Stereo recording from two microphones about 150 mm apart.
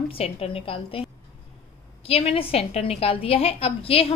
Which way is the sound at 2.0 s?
40° left (ahead or behind).